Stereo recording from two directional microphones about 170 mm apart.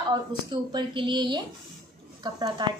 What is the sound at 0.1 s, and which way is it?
A woman's voice, 25° right (ahead or behind).